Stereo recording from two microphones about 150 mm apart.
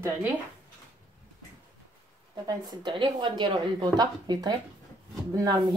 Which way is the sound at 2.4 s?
30° right (ahead or behind).